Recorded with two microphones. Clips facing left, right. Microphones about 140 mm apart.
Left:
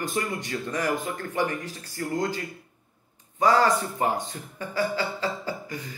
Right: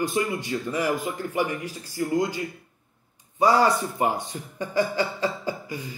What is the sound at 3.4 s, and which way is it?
Speech, 10° right (ahead or behind).